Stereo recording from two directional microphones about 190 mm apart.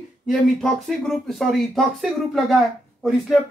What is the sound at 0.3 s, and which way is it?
Speech, centre (ahead or behind).